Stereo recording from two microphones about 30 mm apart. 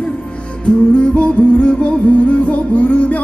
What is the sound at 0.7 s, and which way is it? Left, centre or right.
Music, left.